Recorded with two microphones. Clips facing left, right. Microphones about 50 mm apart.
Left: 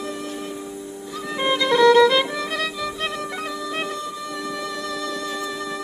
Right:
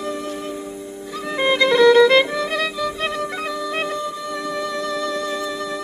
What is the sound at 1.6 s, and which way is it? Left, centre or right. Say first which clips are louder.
Music: right 2 dB; right.